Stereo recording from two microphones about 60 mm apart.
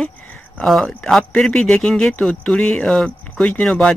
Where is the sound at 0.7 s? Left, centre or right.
Centre.